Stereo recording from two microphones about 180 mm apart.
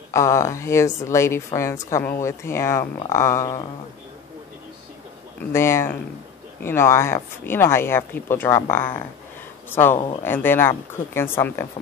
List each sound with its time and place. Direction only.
0.1 s a woman's voice: 15° left (ahead or behind)
5.5 s a woman's voice: 15° left (ahead or behind)